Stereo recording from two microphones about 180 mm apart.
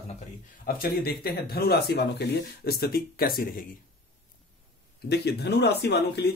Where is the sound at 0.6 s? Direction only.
55° left (ahead or behind).